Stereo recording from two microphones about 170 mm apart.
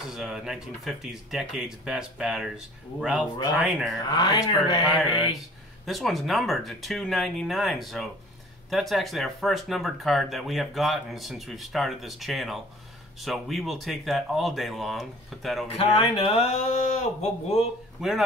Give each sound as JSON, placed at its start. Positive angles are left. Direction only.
{"t": 0.0, "sound": "speech", "side_deg": -5}
{"t": 4.0, "sound": "speech", "side_deg": 25}
{"t": 5.9, "sound": "speech", "side_deg": 0}
{"t": 15.7, "sound": "speech", "side_deg": 35}
{"t": 18.0, "sound": "speech", "side_deg": 0}